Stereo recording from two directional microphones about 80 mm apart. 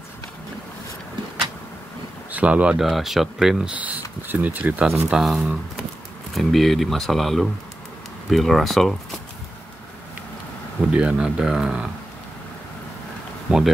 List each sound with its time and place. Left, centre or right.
2.3 s speech: centre
2.8 s speech: centre
3.7 s speech: centre
4.8 s speech: centre
10.9 s speech: centre